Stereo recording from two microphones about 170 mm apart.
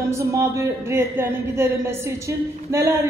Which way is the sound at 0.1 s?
15° right (ahead or behind).